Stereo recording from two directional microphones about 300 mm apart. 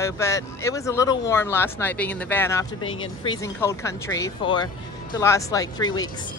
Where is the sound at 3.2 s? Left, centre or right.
Centre.